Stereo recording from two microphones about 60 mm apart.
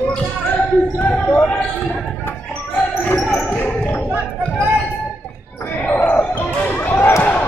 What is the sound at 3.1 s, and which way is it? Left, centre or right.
Basketball bounce, centre.